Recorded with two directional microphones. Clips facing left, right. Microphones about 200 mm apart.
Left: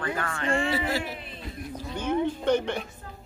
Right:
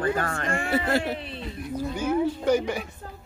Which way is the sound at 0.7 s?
60° right (ahead or behind).